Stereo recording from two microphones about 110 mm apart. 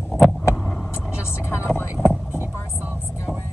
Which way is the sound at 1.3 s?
25° left (ahead or behind).